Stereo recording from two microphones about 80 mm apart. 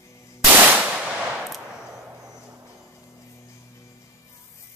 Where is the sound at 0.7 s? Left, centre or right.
Centre.